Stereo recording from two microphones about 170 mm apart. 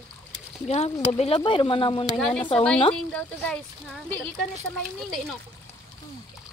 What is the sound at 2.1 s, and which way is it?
Speech, 5° left (ahead or behind).